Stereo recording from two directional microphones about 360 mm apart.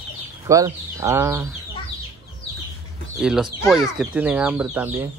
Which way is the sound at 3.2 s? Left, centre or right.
Centre.